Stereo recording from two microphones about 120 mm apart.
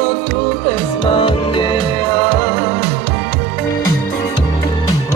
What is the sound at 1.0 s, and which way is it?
Music, 45° left (ahead or behind).